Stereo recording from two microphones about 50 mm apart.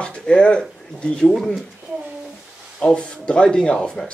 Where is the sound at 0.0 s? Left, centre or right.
Centre.